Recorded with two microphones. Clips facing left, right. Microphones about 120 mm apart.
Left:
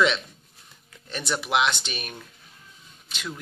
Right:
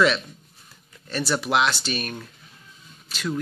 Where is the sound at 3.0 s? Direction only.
15° left (ahead or behind).